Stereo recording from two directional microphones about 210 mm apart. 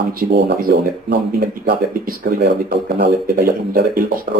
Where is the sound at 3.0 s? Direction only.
45° right (ahead or behind).